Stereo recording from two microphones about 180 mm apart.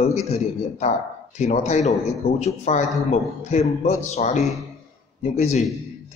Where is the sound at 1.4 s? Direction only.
40° left (ahead or behind).